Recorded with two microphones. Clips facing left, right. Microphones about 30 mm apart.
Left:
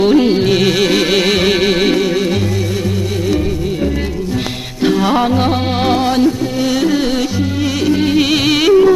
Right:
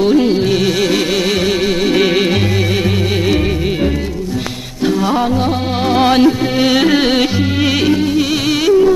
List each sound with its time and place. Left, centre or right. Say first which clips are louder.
0.0 s music: left 1 dB; centre
2.0 s music: right 2 dB; right
4.8 s music: left 1 dB; centre
5.9 s music: right 7 dB; right
8.0 s music: left 2 dB; centre